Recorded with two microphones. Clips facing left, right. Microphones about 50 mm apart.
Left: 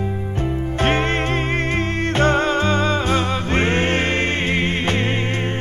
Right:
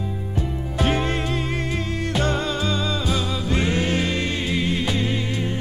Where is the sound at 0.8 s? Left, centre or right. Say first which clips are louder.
Left 3 dB; left.